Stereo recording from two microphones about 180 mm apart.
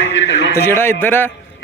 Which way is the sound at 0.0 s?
90° left.